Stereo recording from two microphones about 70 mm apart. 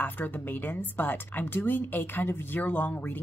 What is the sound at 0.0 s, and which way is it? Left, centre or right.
Speech, left.